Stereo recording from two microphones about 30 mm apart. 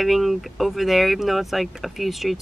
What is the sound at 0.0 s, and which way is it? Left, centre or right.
Speech, centre.